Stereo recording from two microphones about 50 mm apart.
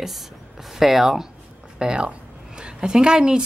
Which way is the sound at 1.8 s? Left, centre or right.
Centre.